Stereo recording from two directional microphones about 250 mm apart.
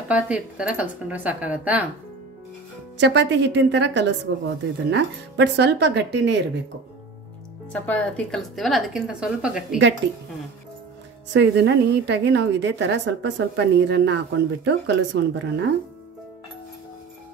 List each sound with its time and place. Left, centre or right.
0.1 s a woman's voice: centre
3.0 s a woman's voice: right
7.7 s a woman's voice: centre
11.3 s a woman's voice: right